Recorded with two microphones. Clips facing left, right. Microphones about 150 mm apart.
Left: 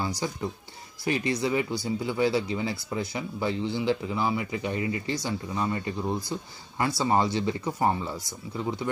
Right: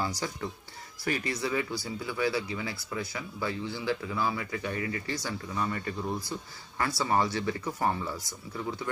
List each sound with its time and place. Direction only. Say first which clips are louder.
1.0 s speech: left 5 dB; 20° left (ahead or behind)